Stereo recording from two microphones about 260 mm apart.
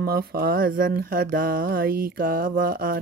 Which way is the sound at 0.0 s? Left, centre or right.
Right.